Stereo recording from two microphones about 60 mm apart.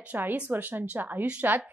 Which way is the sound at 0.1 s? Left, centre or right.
Right.